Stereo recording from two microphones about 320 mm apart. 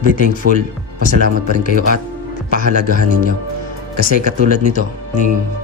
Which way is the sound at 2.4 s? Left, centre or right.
Left.